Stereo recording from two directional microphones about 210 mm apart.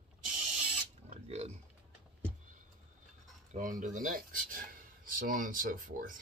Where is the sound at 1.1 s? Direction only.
30° right (ahead or behind).